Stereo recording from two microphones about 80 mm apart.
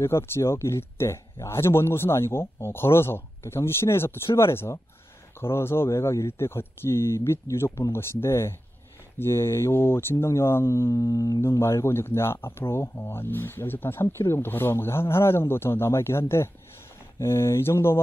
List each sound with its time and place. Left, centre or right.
0.0 s speech: left
11.4 s speech: left